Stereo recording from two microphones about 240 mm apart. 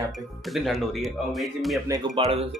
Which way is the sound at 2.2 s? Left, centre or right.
Right.